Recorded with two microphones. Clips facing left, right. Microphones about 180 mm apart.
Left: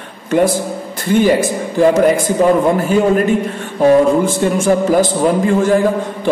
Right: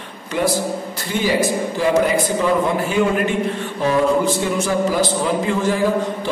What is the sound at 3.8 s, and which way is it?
A man's voice, 50° left (ahead or behind).